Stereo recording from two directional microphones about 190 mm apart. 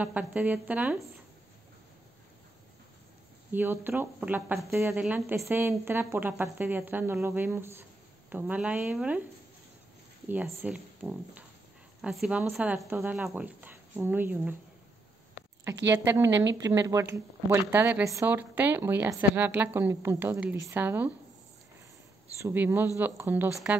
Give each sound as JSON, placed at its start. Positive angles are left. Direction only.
{"t": 0.0, "sound": "speech", "side_deg": -5}
{"t": 3.5, "sound": "speech", "side_deg": -10}
{"t": 10.2, "sound": "a woman's voice", "side_deg": -10}
{"t": 15.9, "sound": "speech", "side_deg": -15}
{"t": 22.4, "sound": "speech", "side_deg": -10}